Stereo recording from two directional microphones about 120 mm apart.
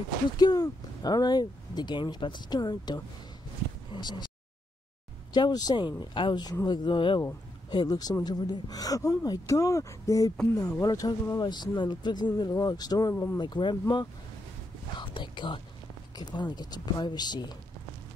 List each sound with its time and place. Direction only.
0.4 s speech: 35° left (ahead or behind)
5.3 s speech: 35° left (ahead or behind)
13.1 s speech: 20° left (ahead or behind)
13.4 s speech: 40° left (ahead or behind)